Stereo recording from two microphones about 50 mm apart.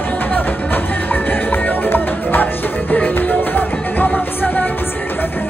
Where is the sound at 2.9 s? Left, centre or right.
Left.